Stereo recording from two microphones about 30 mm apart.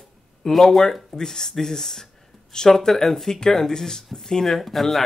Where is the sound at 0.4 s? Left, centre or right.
Centre.